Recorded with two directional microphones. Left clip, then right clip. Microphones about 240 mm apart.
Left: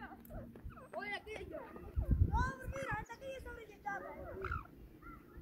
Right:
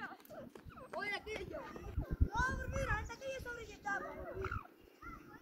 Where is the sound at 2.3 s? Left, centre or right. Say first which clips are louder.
Right 3 dB; right.